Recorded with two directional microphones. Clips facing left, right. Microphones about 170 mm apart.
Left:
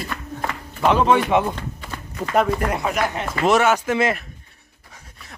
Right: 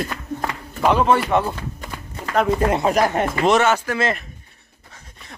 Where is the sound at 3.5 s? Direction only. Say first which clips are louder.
Left 2 dB; 10° left (ahead or behind).